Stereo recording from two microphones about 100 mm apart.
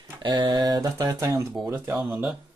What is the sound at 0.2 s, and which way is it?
Speech, 50° right (ahead or behind).